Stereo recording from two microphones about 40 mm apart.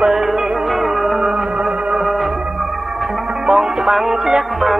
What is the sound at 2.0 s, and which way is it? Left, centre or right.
Music, centre.